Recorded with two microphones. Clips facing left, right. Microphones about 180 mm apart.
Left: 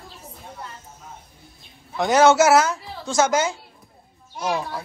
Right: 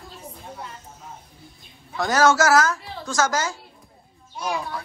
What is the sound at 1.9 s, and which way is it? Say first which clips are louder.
Speech: left 3 dB; 20° left (ahead or behind).